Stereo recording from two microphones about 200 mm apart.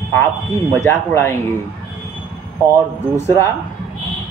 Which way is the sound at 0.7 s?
15° left (ahead or behind).